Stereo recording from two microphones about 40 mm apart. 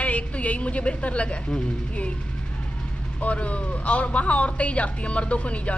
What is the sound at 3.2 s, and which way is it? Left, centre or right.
Speech, left.